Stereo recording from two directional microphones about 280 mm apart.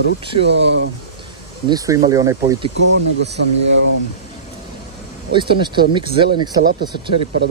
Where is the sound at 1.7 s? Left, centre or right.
Centre.